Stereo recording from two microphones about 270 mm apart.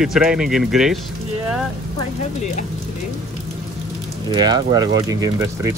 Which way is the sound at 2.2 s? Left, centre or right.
Left.